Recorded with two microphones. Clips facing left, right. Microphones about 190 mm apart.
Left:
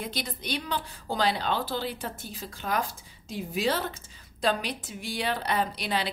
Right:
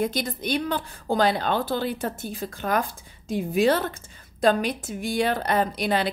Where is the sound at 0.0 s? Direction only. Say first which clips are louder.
Right 9 dB; 50° right (ahead or behind).